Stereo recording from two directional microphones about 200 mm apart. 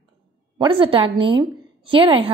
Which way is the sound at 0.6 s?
25° right (ahead or behind).